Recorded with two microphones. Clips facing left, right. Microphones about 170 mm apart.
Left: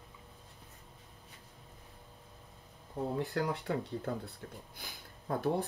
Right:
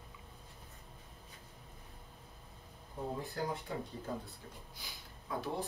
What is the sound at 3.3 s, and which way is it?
Speech, 70° left (ahead or behind).